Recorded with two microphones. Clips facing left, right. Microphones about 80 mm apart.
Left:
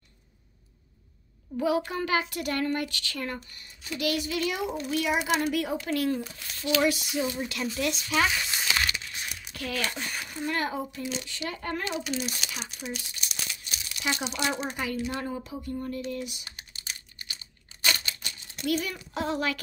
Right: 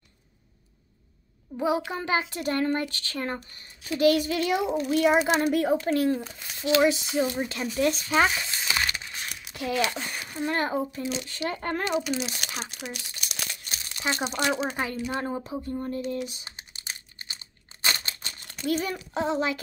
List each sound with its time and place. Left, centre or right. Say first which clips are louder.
1.6 s a child's voice: even; right
9.5 s a sound: right 6 dB; right
10.4 s a child's voice: right 4 dB; right
12.7 s crumpling: left 1 dB; right
13.7 s crumpling: right 1 dB; right
14.5 s a child's voice: right 3 dB; right
16.3 s crumpling: even; right
18.7 s a child's voice: right 2 dB; right